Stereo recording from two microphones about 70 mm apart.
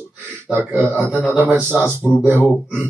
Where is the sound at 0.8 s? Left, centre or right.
Right.